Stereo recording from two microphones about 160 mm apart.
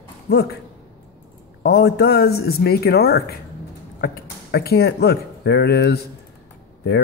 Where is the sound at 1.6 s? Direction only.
85° left.